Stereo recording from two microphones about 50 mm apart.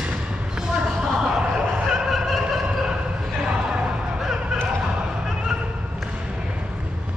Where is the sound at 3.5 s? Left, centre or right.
Centre.